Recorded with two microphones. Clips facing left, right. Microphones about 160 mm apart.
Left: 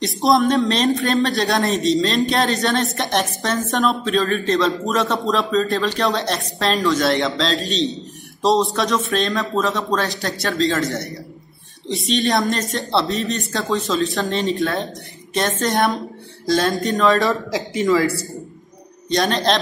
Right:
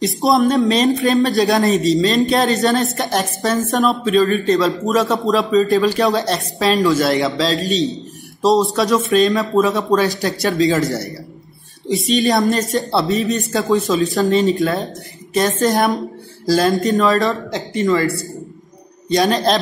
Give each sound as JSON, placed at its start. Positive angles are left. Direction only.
{"t": 0.0, "sound": "a man's voice", "side_deg": 0}
{"t": 13.9, "sound": "a man's voice", "side_deg": 0}